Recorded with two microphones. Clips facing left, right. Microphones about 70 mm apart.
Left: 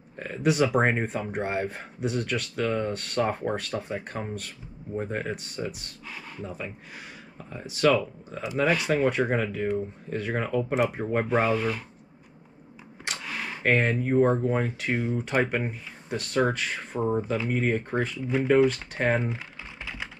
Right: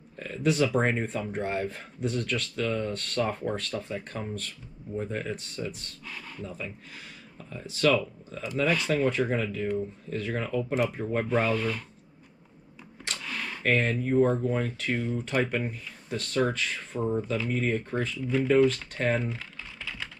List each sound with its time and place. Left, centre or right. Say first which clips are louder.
0.2 s speech: left 2 dB; centre
3.9 s speech: left 2 dB; left
5.7 s speech: left 1 dB; centre
13.0 s speech: left 2 dB; centre
18.9 s typing: left 2 dB; left